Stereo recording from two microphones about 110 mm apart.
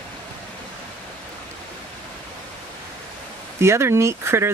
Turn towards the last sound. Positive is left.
turn(degrees=-25)  # may be behind; listen again after turning